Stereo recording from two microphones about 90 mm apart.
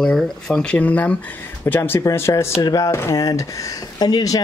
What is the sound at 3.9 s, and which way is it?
Speech, 50° left (ahead or behind).